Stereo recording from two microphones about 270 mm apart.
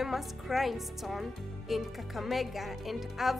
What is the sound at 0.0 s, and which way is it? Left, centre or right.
A woman's voice, centre.